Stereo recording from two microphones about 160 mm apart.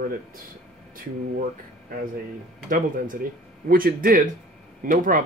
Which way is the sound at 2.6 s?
60° right (ahead or behind).